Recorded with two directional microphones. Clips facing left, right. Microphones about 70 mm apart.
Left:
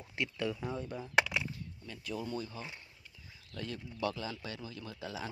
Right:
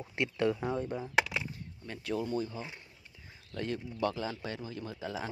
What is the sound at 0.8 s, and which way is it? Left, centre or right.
Speech, right.